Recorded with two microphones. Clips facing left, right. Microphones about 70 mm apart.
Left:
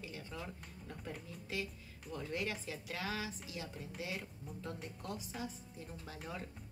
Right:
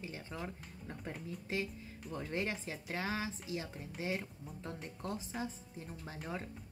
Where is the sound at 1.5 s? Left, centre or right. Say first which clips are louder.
Right 3 dB; right.